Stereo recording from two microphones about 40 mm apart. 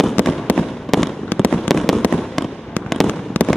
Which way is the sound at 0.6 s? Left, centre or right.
Centre.